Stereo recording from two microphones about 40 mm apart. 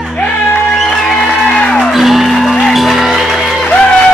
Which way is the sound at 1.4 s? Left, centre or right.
Centre.